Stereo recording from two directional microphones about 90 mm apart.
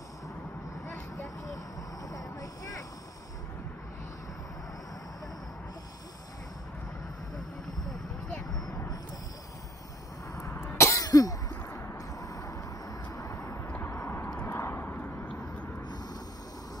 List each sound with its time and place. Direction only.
0.8 s vehicle: 5° left (ahead or behind)
2.0 s vehicle: 40° left (ahead or behind)
7.9 s vehicle: 5° left (ahead or behind)
10.3 s cough: 35° left (ahead or behind)
11.7 s vehicle: 30° left (ahead or behind)
13.7 s horse: 25° left (ahead or behind)
14.4 s a sound: 25° left (ahead or behind)